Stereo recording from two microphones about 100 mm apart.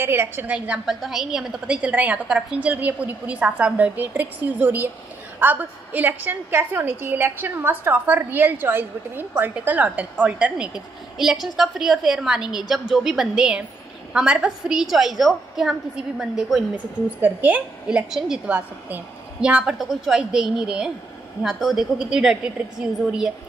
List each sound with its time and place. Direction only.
0.0 s a woman's voice: 25° right (ahead or behind)
0.8 s a woman's voice: centre (ahead or behind)
16.7 s a woman's voice: 20° right (ahead or behind)